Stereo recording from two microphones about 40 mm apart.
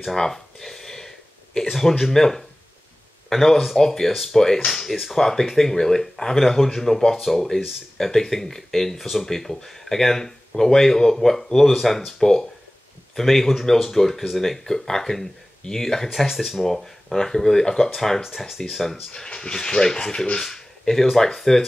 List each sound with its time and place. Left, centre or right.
0.1 s a sound: centre
3.3 s speech: centre
18.2 s speech: centre
19.2 s speech: centre
20.3 s a sound: centre
21.0 s speech: centre